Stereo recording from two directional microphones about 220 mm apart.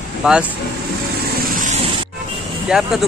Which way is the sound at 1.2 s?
35° right (ahead or behind).